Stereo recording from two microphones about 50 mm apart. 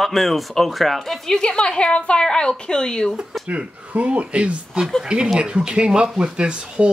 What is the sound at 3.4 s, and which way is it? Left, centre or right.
Speech, right.